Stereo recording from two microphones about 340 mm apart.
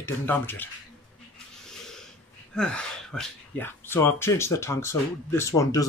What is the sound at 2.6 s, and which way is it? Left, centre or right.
Speech, centre.